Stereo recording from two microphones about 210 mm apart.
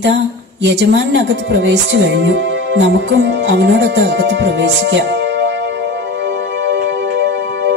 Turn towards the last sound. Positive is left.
turn(degrees=-65)  # may be behind; listen again after turning